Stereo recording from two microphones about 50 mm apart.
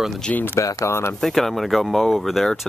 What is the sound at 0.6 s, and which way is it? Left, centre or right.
Speech, left.